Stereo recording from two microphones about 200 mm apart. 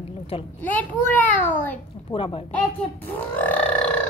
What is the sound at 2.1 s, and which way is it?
Speech, 25° left (ahead or behind).